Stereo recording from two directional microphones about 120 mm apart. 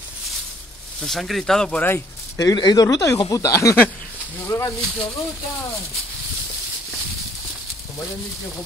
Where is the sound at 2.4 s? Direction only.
30° left (ahead or behind).